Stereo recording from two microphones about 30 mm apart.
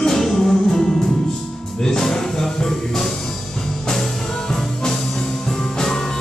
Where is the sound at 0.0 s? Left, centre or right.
Centre.